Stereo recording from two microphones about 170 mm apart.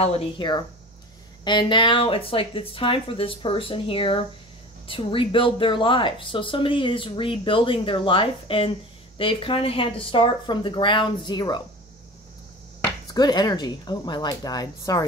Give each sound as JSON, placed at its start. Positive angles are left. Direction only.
{"t": 0.0, "sound": "speech", "side_deg": 30}
{"t": 13.1, "sound": "speech", "side_deg": 25}